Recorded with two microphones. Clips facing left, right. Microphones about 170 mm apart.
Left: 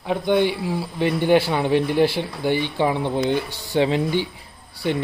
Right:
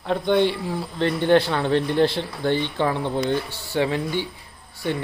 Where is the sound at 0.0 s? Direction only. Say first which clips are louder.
Even; 5° left (ahead or behind).